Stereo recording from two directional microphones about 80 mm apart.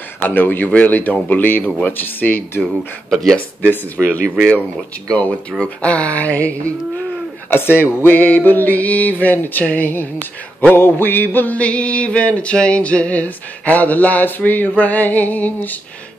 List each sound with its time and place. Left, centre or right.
0.2 s music: left
2.6 s speech: centre
4.1 s music: centre
5.6 s music: centre
7.5 s music: left